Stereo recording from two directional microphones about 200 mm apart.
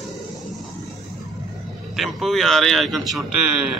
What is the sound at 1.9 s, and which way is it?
A man's voice, centre (ahead or behind).